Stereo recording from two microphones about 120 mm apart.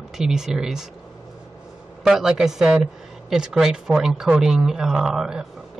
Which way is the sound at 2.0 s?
5° right (ahead or behind).